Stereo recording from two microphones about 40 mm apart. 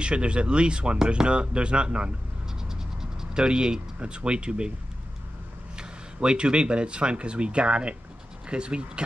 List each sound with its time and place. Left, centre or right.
0.0 s speech: right
3.0 s vehicle: centre
3.4 s speech: right
5.8 s speech: right